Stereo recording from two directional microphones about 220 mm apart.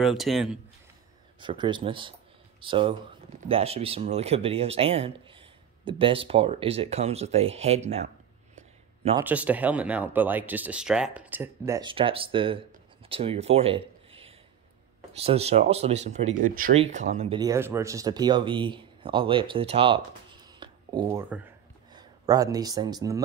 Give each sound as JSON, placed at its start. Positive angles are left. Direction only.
{"t": 0.0, "sound": "speech", "side_deg": 0}
{"t": 1.4, "sound": "speech", "side_deg": -20}
{"t": 9.1, "sound": "speech", "side_deg": -5}
{"t": 17.4, "sound": "speech", "side_deg": -15}
{"t": 20.4, "sound": "a sound", "side_deg": -20}
{"t": 21.9, "sound": "speech", "side_deg": -15}